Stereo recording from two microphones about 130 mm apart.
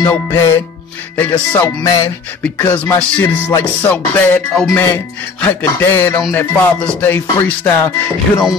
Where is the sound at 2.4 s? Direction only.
15° left (ahead or behind).